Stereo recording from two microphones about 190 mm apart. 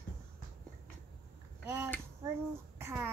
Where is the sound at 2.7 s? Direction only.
15° right (ahead or behind).